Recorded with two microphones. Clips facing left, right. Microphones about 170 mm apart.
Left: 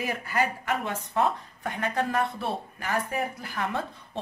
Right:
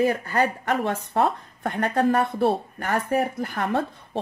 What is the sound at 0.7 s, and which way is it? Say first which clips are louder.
A woman's voice: right 5 dB; 60° right (ahead or behind).